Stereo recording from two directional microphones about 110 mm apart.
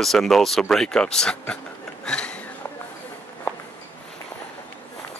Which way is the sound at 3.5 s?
15° left (ahead or behind).